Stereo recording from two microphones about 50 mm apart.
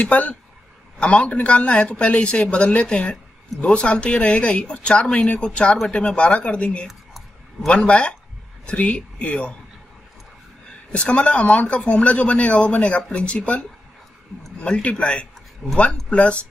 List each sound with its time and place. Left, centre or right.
0.0 s speech: left
10.9 s a man's voice: left